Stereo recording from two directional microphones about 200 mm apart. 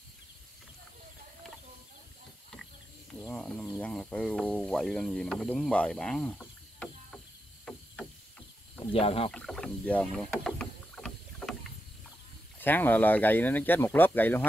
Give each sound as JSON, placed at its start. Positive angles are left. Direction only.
{"t": 3.2, "sound": "speech", "side_deg": 5}
{"t": 7.6, "sound": "a sound", "side_deg": 5}
{"t": 8.9, "sound": "speech", "side_deg": 30}
{"t": 9.3, "sound": "rowboat", "side_deg": 5}
{"t": 12.5, "sound": "speech", "side_deg": 10}